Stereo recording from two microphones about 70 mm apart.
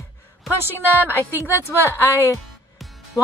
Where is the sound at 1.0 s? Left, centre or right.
Left.